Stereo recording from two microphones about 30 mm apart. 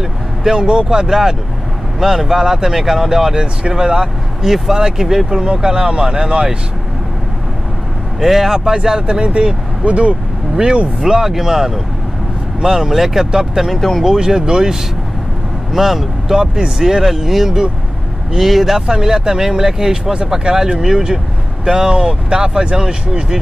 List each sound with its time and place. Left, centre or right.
0.4 s speech: centre
0.7 s speech: right
0.9 s speech: centre
8.2 s speech: centre
8.6 s speech: centre
9.0 s speech: right
10.5 s speech: right
11.1 s speech: centre
13.7 s speech: centre
14.0 s speech: right
15.7 s speech: centre
16.3 s speech: right; by 18.9 s centre
18.9 s speech: right